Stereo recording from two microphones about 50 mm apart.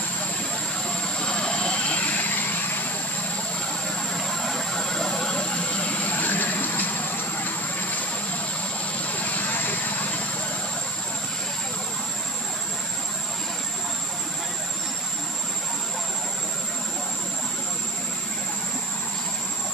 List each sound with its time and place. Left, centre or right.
1.0 s vehicle: centre; by 2.9 s left
4.2 s vehicle: centre; by 7.9 s left
9.1 s vehicle: left